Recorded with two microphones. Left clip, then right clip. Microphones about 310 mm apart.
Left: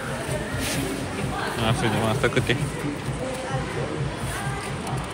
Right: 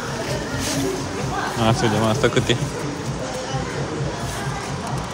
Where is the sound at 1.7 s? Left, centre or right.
Centre.